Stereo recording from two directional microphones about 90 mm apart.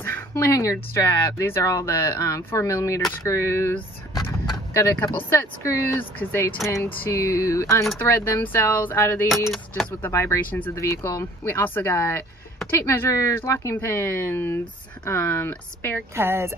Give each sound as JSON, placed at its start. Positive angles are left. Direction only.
{"t": 0.0, "sound": "speech", "side_deg": 30}
{"t": 5.0, "sound": "speech", "side_deg": 25}
{"t": 6.7, "sound": "speech", "side_deg": 35}
{"t": 8.1, "sound": "speech", "side_deg": 25}
{"t": 10.5, "sound": "speech", "side_deg": 20}
{"t": 10.8, "sound": "speech", "side_deg": 30}
{"t": 16.2, "sound": "speech", "side_deg": -30}